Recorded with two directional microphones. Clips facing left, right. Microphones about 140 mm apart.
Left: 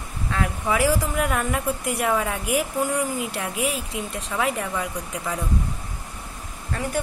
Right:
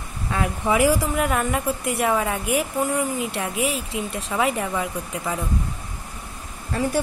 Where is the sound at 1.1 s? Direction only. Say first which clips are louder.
Right 2 dB; centre (ahead or behind).